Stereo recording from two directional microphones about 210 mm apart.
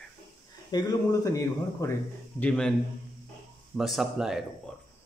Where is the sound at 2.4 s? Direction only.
5° left (ahead or behind).